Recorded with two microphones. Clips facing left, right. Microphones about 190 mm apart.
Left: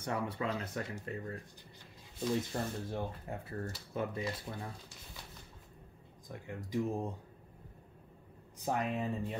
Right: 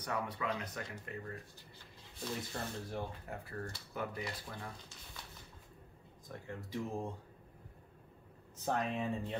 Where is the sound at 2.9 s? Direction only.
20° left (ahead or behind).